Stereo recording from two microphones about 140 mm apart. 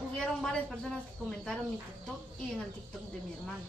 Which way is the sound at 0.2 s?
5° left (ahead or behind).